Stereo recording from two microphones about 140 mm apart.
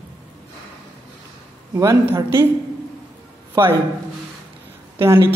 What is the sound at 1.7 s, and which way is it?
Speech, 20° right (ahead or behind).